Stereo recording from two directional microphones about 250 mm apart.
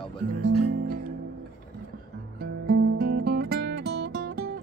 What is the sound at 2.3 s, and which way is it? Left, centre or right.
Music, right.